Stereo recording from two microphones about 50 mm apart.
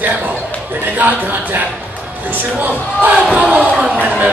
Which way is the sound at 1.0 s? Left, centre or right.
Right.